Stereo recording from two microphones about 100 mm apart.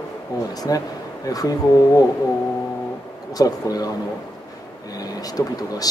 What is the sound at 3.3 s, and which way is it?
Speech, 40° left (ahead or behind).